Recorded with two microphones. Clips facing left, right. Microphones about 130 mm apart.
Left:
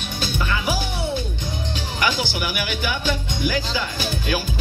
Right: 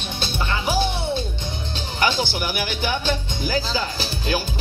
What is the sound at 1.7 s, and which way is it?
Speech, 35° right (ahead or behind).